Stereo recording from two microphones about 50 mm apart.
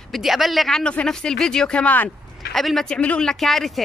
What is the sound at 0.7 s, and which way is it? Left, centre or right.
Speech, centre.